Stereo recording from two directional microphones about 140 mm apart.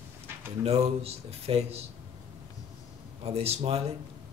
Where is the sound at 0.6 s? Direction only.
45° right (ahead or behind).